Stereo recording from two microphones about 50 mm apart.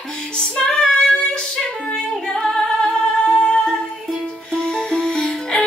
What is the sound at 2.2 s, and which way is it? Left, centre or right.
Music, centre.